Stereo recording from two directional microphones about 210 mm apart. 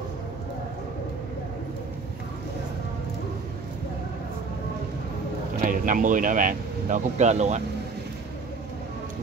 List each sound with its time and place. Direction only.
5.6 s speech: 40° right (ahead or behind)